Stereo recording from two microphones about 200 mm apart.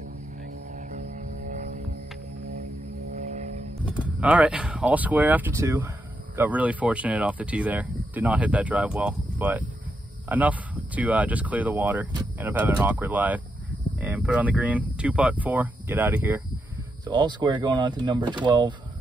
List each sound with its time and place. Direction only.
0.7 s a sound: 40° right (ahead or behind)
3.1 s vehicle: 35° right (ahead or behind)
3.8 s speech: 5° right (ahead or behind)
17.0 s speech: 20° right (ahead or behind)